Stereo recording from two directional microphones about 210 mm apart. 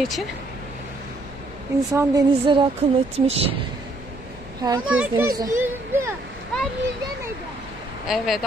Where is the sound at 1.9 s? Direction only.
20° right (ahead or behind).